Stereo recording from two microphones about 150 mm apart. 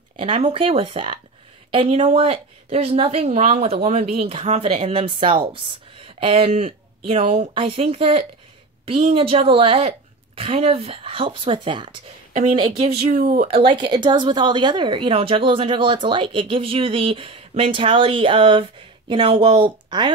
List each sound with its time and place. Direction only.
0.2 s a woman's voice: 35° right (ahead or behind)
13.1 s speech: 65° right (ahead or behind)
13.7 s a woman's voice: 30° right (ahead or behind)